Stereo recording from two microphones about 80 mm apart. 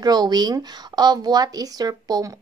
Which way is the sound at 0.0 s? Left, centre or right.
Right.